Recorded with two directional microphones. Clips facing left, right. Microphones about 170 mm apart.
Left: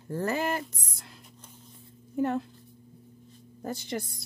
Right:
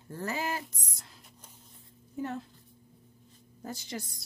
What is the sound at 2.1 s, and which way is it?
Speech, 60° left (ahead or behind).